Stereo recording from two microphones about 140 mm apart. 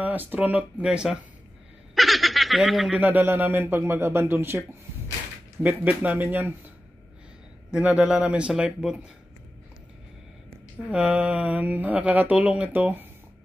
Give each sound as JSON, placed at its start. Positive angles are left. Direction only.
{"t": 0.0, "sound": "speech", "side_deg": -10}
{"t": 3.0, "sound": "speech", "side_deg": -10}
{"t": 7.7, "sound": "speech", "side_deg": -10}
{"t": 10.9, "sound": "speech", "side_deg": -5}